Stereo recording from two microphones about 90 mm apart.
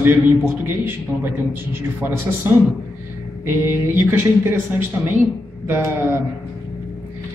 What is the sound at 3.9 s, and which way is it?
Speech, 25° right (ahead or behind).